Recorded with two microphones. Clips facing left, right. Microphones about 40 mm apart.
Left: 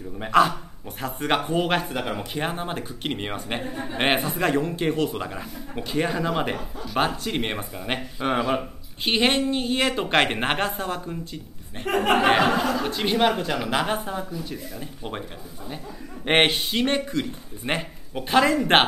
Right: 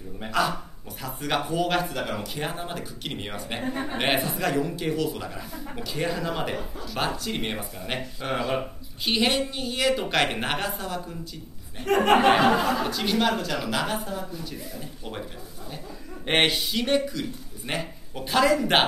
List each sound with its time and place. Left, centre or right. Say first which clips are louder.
0.3 s speech: left 6 dB; left
11.9 s speech: right 1 dB; centre
16.3 s speech: left 3 dB; centre